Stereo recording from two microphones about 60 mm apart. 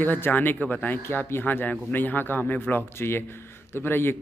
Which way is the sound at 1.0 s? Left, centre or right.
Left.